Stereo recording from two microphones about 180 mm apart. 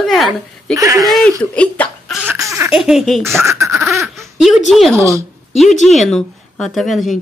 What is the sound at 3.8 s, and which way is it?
Speech, centre (ahead or behind).